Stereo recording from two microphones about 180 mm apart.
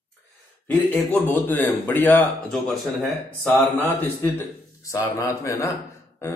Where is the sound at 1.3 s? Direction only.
10° left (ahead or behind).